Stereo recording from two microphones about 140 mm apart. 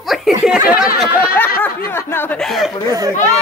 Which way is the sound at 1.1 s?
90° left.